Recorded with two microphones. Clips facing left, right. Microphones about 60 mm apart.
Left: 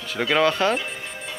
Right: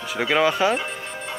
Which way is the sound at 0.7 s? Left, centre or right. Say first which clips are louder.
Right 1 dB; right.